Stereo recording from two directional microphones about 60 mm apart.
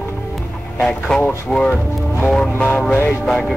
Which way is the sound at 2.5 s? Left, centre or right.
Left.